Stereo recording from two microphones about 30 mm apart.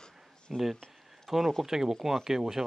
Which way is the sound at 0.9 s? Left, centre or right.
Centre.